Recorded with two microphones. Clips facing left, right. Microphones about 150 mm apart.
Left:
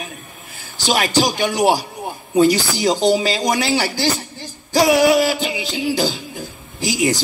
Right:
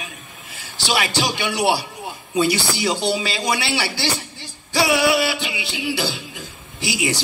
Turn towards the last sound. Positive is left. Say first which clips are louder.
# left 5 dB
turn(degrees=40)  # may be behind; listen again after turning